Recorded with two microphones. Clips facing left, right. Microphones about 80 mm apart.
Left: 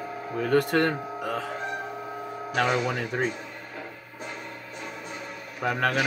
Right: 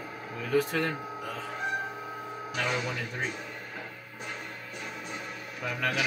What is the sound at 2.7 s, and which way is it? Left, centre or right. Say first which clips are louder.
Speech: left 6 dB; left.